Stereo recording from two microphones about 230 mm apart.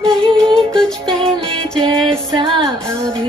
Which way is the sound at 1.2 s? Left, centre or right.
Right.